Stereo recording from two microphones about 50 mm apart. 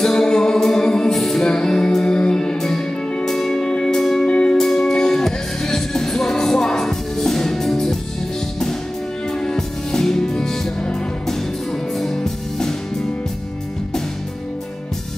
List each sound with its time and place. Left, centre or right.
0.0 s music: centre
1.1 s music: centre
1.4 s music: centre
4.3 s music: left
4.6 s music: centre
9.3 s music: centre